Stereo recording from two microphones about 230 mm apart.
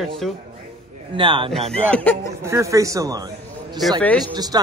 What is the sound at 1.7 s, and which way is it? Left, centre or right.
Speech, centre.